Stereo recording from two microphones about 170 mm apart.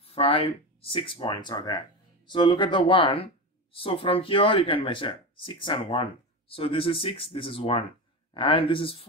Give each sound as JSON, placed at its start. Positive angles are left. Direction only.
{"t": 0.0, "sound": "speech", "side_deg": 35}